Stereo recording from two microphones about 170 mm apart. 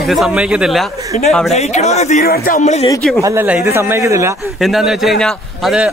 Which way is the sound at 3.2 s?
15° right (ahead or behind).